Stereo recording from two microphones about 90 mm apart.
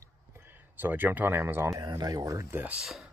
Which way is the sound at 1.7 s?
40° right (ahead or behind).